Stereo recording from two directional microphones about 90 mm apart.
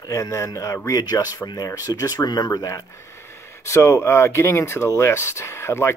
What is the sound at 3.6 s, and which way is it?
Speech, 35° left (ahead or behind).